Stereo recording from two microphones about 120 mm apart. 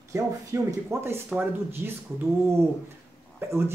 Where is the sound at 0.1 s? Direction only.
25° right (ahead or behind).